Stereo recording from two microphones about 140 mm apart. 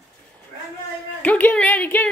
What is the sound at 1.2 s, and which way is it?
Speech, 10° left (ahead or behind).